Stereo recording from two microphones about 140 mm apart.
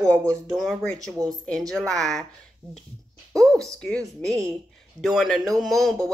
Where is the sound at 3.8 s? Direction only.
5° left (ahead or behind).